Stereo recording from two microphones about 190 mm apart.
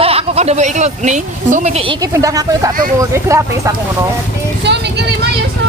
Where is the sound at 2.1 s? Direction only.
15° right (ahead or behind).